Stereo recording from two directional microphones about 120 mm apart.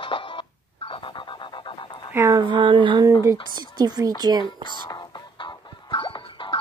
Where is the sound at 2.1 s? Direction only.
25° right (ahead or behind).